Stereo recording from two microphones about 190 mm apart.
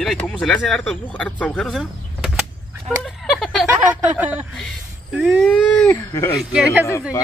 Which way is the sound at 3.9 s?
5° right (ahead or behind).